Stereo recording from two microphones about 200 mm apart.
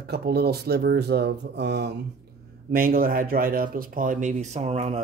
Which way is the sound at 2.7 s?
45° right (ahead or behind).